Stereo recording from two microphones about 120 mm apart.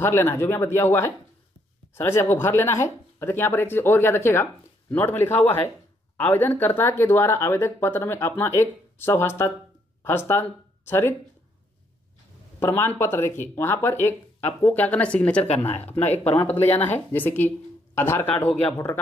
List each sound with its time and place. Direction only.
0.0 s speech: 20° left (ahead or behind)
12.5 s speech: 20° left (ahead or behind)
15.4 s speech: 60° left (ahead or behind)
16.7 s speech: 15° left (ahead or behind)